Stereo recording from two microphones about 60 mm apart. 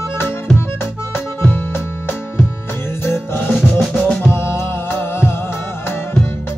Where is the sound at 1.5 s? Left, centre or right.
Left.